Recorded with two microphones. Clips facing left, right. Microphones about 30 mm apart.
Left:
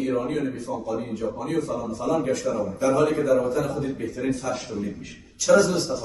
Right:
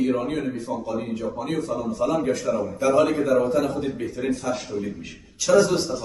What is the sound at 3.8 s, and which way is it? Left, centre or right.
Speech, right.